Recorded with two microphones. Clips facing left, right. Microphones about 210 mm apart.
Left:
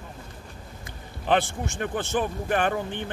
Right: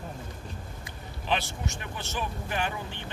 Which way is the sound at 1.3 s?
50° left (ahead or behind).